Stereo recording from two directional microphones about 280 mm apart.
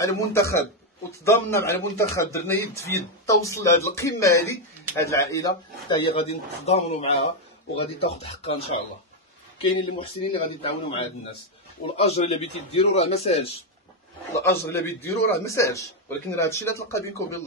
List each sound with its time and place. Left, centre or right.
0.0 s speech: centre
14.4 s speech: centre